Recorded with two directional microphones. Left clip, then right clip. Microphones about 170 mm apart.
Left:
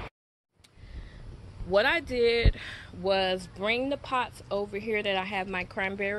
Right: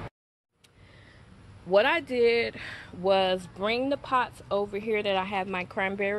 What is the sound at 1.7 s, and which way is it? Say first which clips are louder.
Speech: right 2 dB; 5° right (ahead or behind).